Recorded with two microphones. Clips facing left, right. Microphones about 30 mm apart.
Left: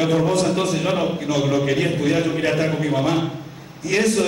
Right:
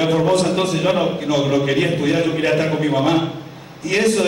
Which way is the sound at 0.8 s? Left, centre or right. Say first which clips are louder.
Right 3 dB; centre.